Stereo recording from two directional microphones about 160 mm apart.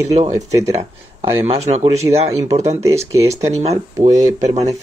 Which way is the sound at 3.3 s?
40° right (ahead or behind).